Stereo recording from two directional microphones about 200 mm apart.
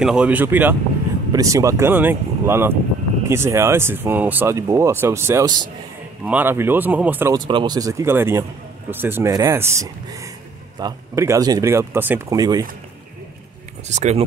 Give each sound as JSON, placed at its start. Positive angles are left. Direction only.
{"t": 0.0, "sound": "speech", "side_deg": -5}
{"t": 7.3, "sound": "speech", "side_deg": -20}
{"t": 13.8, "sound": "speech", "side_deg": -35}